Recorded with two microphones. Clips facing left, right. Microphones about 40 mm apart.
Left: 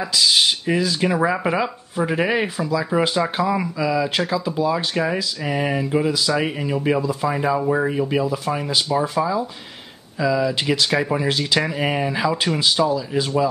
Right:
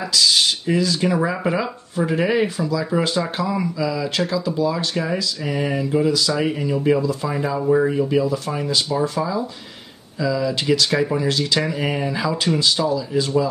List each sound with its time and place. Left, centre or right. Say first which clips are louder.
0.1 s speech: even; centre